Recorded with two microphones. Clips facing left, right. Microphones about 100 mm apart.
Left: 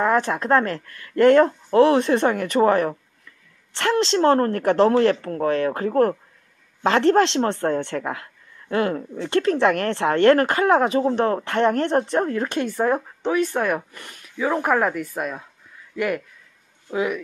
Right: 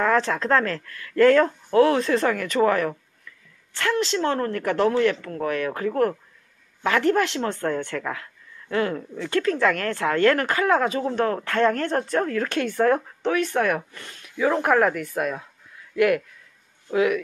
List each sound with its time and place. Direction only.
0.0 s speech: 15° left (ahead or behind)
4.2 s speech: 40° left (ahead or behind); by 12.4 s 25° left (ahead or behind)
12.5 s speech: 10° left (ahead or behind)
16.9 s speech: 5° left (ahead or behind)